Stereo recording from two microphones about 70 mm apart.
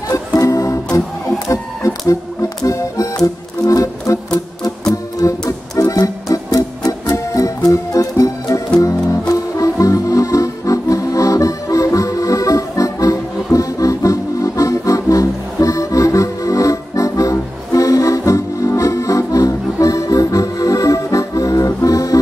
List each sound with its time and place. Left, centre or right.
0.1 s music: left
1.5 s chicken: left
2.6 s music: left
5.2 s music: left